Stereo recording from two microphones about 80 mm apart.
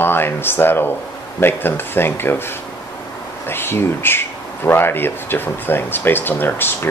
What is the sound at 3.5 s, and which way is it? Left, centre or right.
Speech, left.